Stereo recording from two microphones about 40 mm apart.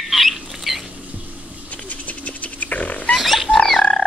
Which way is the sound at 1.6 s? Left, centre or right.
Left.